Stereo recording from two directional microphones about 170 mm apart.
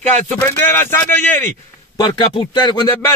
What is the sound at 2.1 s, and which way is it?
Speech, 25° left (ahead or behind).